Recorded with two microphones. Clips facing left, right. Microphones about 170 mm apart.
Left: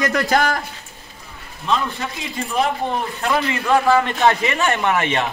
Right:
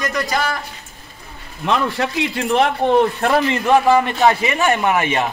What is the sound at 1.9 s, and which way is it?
Speech, 70° right (ahead or behind).